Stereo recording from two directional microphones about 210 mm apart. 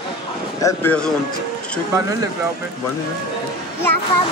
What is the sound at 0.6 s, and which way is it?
Speech, 10° left (ahead or behind).